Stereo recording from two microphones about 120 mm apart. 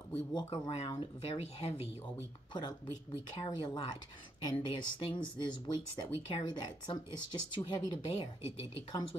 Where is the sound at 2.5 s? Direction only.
40° left (ahead or behind).